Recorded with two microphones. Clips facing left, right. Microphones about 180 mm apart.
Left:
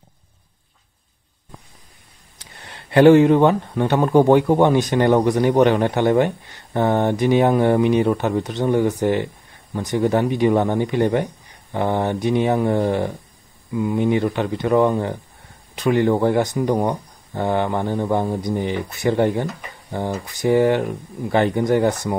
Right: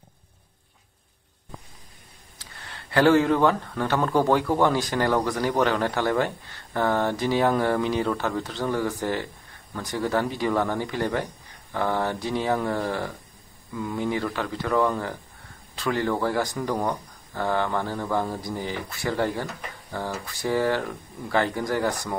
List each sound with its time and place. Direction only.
2.3 s speech: 20° left (ahead or behind)